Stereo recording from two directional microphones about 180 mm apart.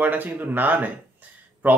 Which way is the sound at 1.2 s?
10° right (ahead or behind).